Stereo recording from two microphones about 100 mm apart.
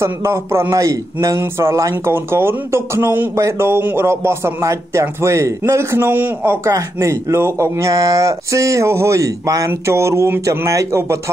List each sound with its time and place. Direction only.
0.0 s speech: 25° right (ahead or behind)